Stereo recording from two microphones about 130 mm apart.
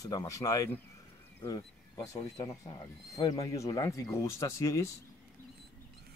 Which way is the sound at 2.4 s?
35° left (ahead or behind).